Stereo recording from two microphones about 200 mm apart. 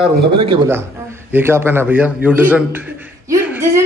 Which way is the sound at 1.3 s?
10° right (ahead or behind).